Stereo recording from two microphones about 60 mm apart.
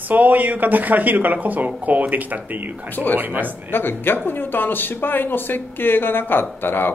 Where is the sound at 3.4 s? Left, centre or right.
Left.